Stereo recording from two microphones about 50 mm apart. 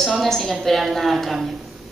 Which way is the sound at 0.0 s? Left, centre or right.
Centre.